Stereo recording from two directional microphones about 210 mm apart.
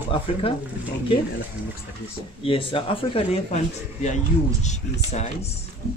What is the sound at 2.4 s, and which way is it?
Speech, 25° left (ahead or behind).